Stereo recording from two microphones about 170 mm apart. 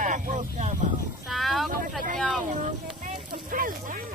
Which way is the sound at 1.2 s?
Centre (ahead or behind).